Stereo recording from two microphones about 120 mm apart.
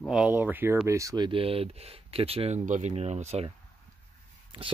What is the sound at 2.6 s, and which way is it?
Speech, 90° right.